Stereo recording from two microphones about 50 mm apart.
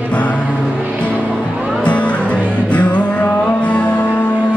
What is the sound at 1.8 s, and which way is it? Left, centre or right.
Music, left.